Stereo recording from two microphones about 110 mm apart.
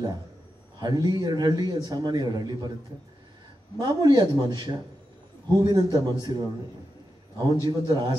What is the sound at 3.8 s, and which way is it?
A man's voice, 35° right (ahead or behind).